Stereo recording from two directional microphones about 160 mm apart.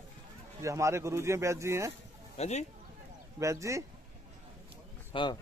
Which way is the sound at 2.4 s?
45° left (ahead or behind).